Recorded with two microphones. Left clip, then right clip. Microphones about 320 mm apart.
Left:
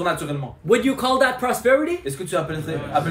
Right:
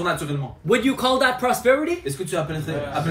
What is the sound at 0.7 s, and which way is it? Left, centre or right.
Speech, left.